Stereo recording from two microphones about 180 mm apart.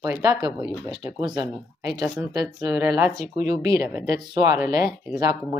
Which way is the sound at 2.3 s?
20° right (ahead or behind).